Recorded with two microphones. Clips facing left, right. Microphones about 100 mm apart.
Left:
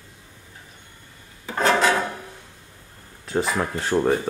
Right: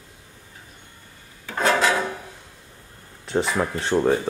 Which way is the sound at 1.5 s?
Centre (ahead or behind).